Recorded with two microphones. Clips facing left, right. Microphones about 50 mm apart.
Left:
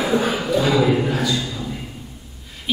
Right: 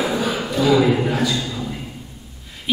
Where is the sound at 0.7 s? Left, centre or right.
Centre.